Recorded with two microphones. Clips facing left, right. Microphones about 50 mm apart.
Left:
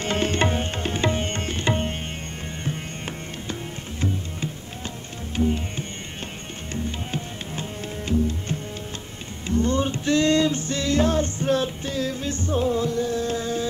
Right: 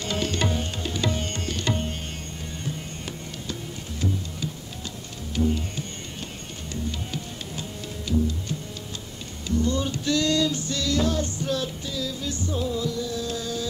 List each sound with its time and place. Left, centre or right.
0.0 s music: left
5.3 s music: left